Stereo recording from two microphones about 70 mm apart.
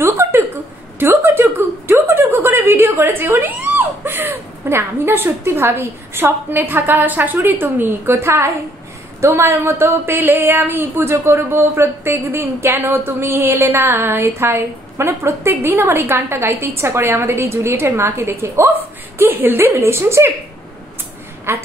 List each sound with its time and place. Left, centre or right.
0.0 s a sound: right
7.3 s speech: right
21.5 s speech: right